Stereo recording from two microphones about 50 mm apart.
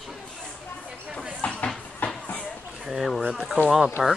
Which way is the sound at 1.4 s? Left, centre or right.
Left.